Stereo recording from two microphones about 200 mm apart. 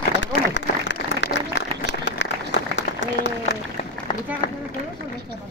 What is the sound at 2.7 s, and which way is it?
Applause, 65° left (ahead or behind).